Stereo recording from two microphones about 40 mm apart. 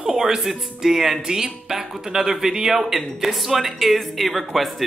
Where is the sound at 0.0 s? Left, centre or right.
Centre.